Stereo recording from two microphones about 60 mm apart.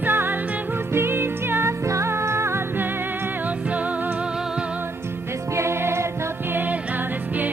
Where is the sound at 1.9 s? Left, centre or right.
Right.